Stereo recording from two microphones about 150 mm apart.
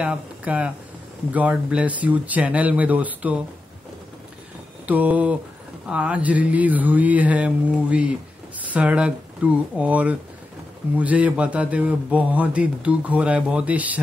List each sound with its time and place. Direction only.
0.0 s mantra: 10° right (ahead or behind)
4.8 s mantra: 10° right (ahead or behind)